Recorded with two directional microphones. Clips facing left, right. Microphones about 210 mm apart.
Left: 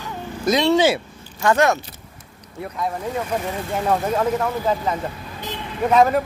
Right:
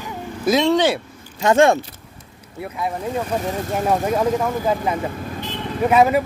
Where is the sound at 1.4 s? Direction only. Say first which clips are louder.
Right 3 dB; 25° right (ahead or behind).